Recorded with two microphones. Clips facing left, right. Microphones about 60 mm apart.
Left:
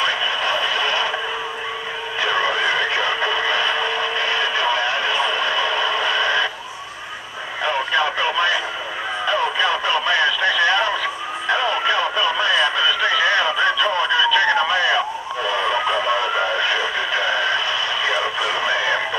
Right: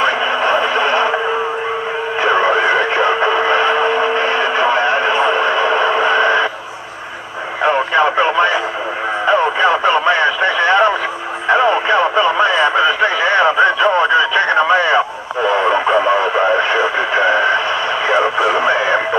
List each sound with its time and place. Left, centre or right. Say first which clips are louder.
0.0 s radio: right 6 dB; right
2.2 s a sound: right 7 dB; right
7.6 s radio: right 7 dB; right